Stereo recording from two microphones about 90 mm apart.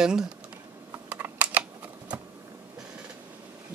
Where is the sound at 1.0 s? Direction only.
20° right (ahead or behind).